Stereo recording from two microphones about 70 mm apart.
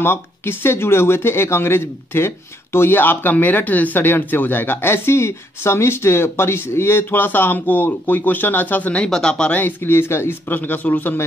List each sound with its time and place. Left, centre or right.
0.0 s speech: left
9.0 s speech: centre
9.6 s speech: left